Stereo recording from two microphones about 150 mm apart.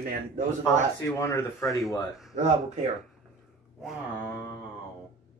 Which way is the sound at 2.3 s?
45° right (ahead or behind).